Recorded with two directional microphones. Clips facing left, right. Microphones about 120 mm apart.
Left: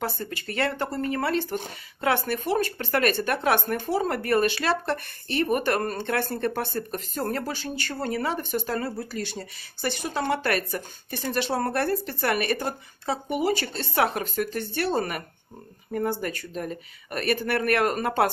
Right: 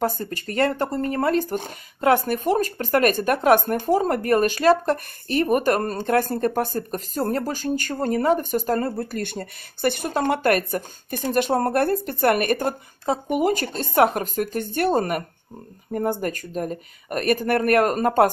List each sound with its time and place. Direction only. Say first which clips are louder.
0.0 s speech: right 6 dB; 45° right (ahead or behind)